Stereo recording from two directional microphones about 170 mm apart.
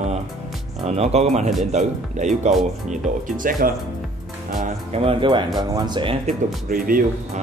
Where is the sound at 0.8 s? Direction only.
40° right (ahead or behind).